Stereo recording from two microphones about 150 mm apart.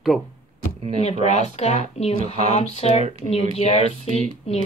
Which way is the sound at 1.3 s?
50° left (ahead or behind).